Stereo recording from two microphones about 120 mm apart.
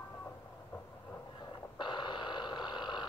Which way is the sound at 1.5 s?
40° left (ahead or behind).